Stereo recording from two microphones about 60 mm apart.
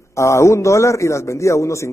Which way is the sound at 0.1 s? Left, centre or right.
Left.